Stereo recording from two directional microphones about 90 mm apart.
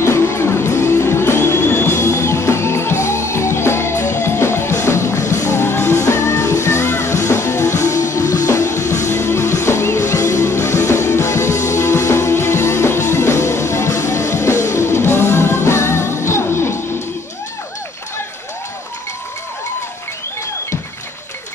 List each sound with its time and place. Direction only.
0.0 s music: 30° left (ahead or behind)